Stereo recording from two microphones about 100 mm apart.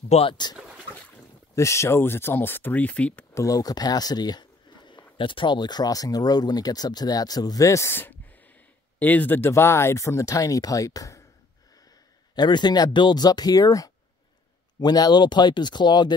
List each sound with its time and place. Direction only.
0.3 s speech: 45° left (ahead or behind)
1.5 s speech: 30° left (ahead or behind); by 3.3 s 10° left (ahead or behind)
3.3 s speech: 35° left (ahead or behind)
12.4 s speech: 45° left (ahead or behind)